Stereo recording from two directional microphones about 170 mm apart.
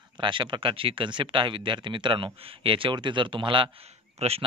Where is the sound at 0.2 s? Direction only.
30° right (ahead or behind).